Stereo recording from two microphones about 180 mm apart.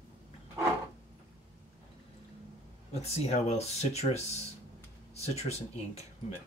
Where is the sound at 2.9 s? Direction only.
35° left (ahead or behind).